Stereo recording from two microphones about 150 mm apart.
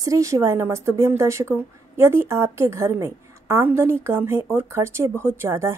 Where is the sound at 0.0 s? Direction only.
20° right (ahead or behind).